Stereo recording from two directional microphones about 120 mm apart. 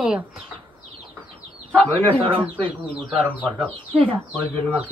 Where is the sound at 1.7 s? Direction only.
10° left (ahead or behind).